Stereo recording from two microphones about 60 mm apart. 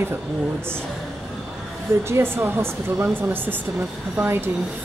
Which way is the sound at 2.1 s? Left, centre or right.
Right.